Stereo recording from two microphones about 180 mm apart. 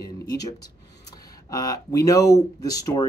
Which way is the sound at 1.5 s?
20° left (ahead or behind).